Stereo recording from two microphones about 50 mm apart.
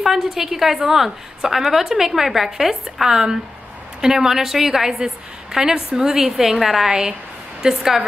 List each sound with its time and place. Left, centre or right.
0.0 s a woman's voice: centre
6.9 s a woman's voice: centre
7.6 s a woman's voice: centre